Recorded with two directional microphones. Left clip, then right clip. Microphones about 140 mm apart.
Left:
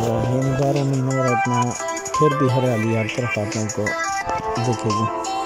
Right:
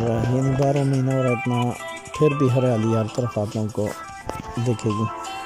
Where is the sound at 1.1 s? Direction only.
45° left (ahead or behind).